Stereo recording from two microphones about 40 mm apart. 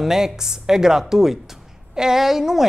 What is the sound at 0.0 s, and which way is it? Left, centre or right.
Speech, centre.